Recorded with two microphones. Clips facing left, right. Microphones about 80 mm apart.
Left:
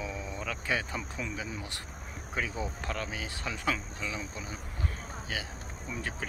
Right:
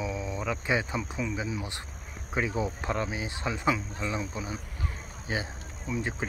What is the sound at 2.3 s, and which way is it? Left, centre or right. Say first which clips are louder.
Speech: right 5 dB; right.